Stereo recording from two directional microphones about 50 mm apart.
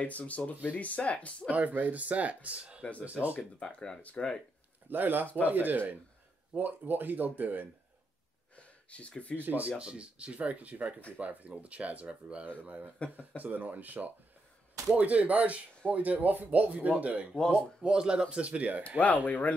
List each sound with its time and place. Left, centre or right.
0.0 s speech: left
1.5 s speech: right
2.8 s speech: left
3.1 s speech: right
3.5 s speech: centre
4.8 s speech: right
8.5 s a sound: left
9.4 s speech: right
9.8 s speech: right
17.8 s speech: centre
18.9 s speech: left